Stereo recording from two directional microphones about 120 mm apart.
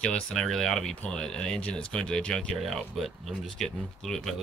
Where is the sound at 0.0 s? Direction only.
5° left (ahead or behind).